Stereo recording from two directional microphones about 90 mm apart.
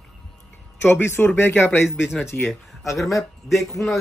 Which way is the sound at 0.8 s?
25° left (ahead or behind).